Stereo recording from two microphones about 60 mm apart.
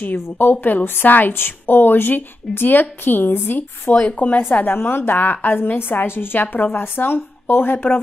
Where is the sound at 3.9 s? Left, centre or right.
Left.